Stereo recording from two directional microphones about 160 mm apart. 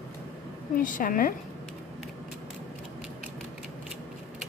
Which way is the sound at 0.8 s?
55° left (ahead or behind).